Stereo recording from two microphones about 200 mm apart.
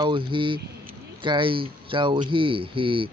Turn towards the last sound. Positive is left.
turn(degrees=-25)  # may be behind; listen again after turning